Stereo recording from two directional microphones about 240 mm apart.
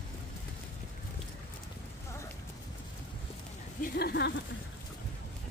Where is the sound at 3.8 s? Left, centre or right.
Left.